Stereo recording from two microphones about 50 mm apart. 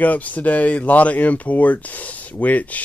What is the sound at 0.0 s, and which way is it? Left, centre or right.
Speech, left.